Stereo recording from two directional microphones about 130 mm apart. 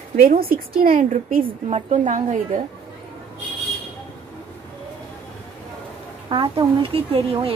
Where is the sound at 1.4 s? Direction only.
50° right (ahead or behind); by 2.6 s 70° right (ahead or behind).